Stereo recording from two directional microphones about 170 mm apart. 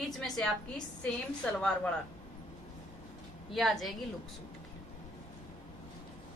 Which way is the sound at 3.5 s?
Centre (ahead or behind).